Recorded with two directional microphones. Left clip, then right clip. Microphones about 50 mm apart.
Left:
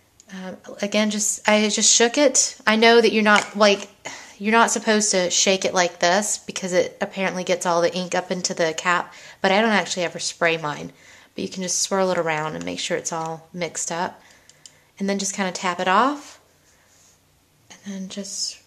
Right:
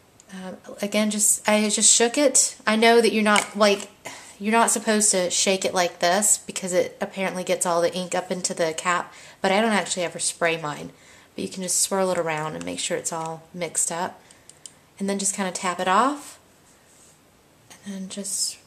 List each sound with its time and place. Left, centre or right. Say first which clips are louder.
0.3 s speech: left 2 dB; left
17.6 s a woman's voice: left 2 dB; left